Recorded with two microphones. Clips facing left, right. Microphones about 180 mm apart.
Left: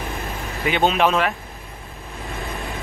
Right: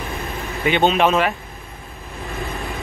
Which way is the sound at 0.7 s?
Centre (ahead or behind).